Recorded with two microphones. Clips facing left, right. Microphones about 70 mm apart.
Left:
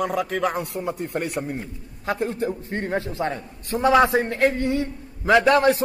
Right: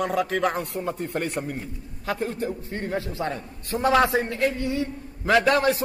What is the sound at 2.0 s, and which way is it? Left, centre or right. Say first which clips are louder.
A man's voice: left 3 dB; left.